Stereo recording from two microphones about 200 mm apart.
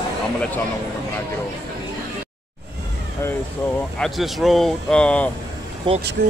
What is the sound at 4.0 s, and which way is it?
Speech, centre (ahead or behind).